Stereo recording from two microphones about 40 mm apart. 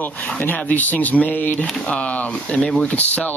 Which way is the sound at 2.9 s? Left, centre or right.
Left.